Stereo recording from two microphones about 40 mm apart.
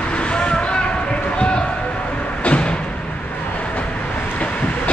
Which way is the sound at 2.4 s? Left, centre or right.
Left.